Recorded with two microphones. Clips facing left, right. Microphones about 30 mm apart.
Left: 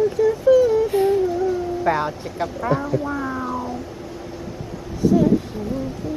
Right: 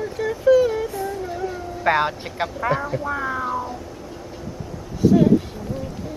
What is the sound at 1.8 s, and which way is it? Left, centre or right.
Speech, right.